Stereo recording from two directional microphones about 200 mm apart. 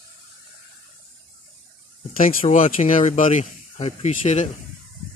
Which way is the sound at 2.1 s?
35° left (ahead or behind).